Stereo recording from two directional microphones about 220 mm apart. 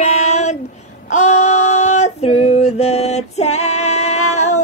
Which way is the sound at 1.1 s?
30° left (ahead or behind).